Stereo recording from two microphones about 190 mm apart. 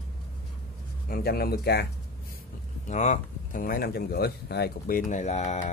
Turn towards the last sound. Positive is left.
turn(degrees=40)  # may be behind; listen again after turning